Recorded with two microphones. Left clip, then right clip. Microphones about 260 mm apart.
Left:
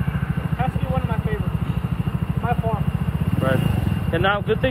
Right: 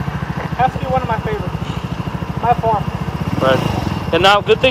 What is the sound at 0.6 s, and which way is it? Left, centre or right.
Speech, right.